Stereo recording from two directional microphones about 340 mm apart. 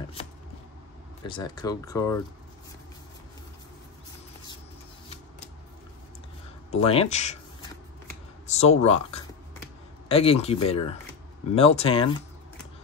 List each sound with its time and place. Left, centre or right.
1.2 s speech: centre
6.7 s speech: centre
8.5 s speech: centre